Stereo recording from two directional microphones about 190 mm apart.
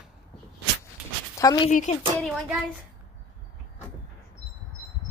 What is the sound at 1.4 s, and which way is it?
Speech, 20° left (ahead or behind).